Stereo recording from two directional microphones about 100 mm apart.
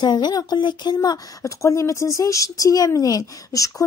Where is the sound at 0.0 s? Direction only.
45° left (ahead or behind).